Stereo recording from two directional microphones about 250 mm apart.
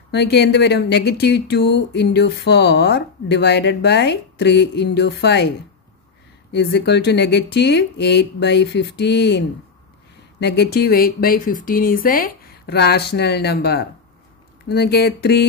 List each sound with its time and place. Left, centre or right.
0.1 s speech: left
6.5 s speech: left
10.4 s speech: left